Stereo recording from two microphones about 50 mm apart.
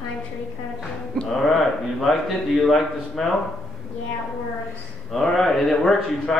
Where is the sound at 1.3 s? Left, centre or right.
Centre.